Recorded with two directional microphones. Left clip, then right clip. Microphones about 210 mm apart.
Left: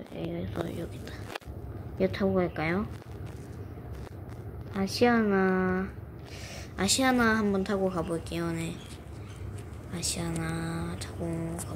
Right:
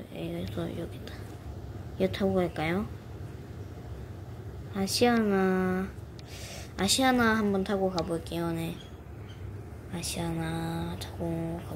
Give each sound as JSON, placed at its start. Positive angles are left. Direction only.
{"t": 0.2, "sound": "a sound", "side_deg": -15}
{"t": 0.7, "sound": "a woman's voice", "side_deg": 0}
{"t": 4.7, "sound": "a woman's voice", "side_deg": -10}
{"t": 9.9, "sound": "a woman's voice", "side_deg": 0}